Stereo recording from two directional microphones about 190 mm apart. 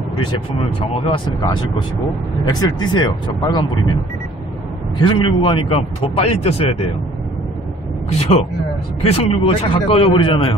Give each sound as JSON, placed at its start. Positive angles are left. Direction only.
{"t": 0.6, "sound": "speech", "side_deg": 30}
{"t": 2.4, "sound": "speech", "side_deg": 25}
{"t": 4.9, "sound": "speech", "side_deg": 25}
{"t": 8.1, "sound": "speech", "side_deg": 30}